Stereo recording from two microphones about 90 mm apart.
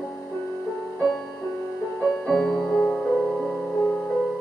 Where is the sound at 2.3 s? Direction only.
Centre (ahead or behind).